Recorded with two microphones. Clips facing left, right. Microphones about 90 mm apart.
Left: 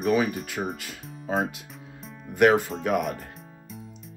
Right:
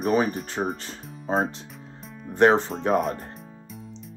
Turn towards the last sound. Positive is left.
turn(degrees=-30)  # may be behind; listen again after turning